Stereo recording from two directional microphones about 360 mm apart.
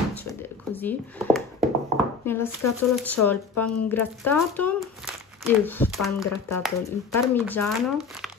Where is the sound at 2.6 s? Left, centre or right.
Left.